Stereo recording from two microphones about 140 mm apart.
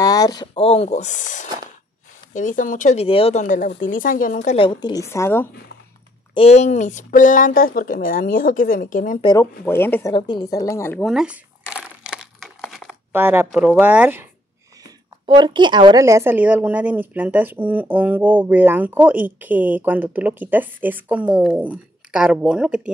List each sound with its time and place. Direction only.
0.0 s a sound: 25° left (ahead or behind)
0.6 s speech: 45° left (ahead or behind); by 3.0 s 70° left (ahead or behind)
3.0 s speech: 45° left (ahead or behind)
3.3 s speech: 70° left (ahead or behind)
4.6 s a woman's voice: 35° left (ahead or behind)
5.0 s a woman's voice: 20° left (ahead or behind)
6.3 s speech: 50° left (ahead or behind); by 9.2 s 70° left (ahead or behind)
9.2 s a woman's voice: 30° left (ahead or behind)
9.7 s speech: 15° left (ahead or behind)
10.1 s a woman's voice: 30° left (ahead or behind)
11.0 s a sound: centre (ahead or behind)
12.4 s crumpling: centre (ahead or behind)
13.1 s a woman's voice: 15° right (ahead or behind)
14.8 s a woman's voice: 35° right (ahead or behind); by 22.8 s 5° right (ahead or behind)